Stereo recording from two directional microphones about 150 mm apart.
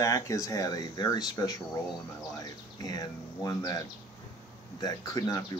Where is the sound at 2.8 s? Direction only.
25° left (ahead or behind).